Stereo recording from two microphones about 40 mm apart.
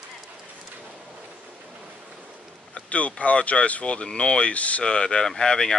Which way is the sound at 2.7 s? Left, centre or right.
Left.